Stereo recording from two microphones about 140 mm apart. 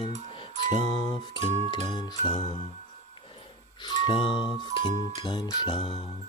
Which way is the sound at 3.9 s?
40° left (ahead or behind).